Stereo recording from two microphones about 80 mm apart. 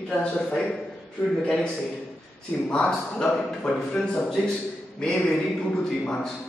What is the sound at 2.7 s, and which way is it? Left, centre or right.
A man's voice, centre.